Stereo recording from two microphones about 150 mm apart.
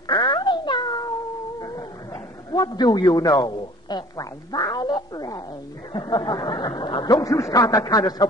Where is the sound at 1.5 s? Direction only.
20° left (ahead or behind).